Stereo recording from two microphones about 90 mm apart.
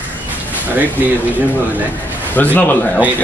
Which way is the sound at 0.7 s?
20° right (ahead or behind).